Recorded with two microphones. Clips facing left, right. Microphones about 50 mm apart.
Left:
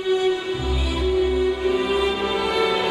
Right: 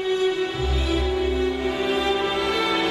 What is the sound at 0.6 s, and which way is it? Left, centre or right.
Music, centre.